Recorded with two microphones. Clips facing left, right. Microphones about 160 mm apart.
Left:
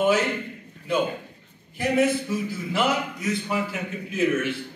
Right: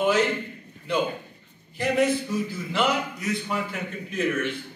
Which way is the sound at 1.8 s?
5° left (ahead or behind).